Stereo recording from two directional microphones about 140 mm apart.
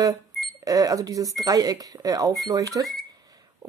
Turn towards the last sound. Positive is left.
turn(degrees=-25)  # may be behind; listen again after turning